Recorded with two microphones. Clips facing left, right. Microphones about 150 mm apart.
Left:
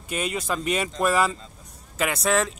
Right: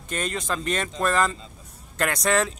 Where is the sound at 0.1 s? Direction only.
10° left (ahead or behind).